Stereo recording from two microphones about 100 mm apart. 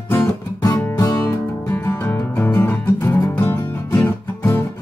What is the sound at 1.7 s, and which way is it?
Music, 15° left (ahead or behind).